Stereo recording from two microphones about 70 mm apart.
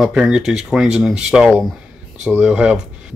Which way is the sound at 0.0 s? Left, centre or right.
Centre.